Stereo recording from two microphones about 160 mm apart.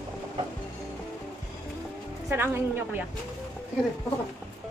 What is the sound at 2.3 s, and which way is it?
Speech, 15° right (ahead or behind).